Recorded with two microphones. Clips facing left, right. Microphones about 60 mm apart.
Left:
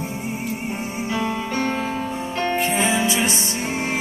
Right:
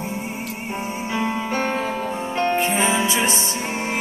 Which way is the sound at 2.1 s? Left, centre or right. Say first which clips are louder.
Right 4 dB; right.